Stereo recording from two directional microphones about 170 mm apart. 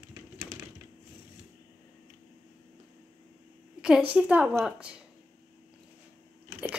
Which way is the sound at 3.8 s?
5° right (ahead or behind).